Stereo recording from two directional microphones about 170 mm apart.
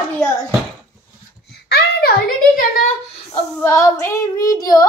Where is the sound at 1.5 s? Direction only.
70° left (ahead or behind).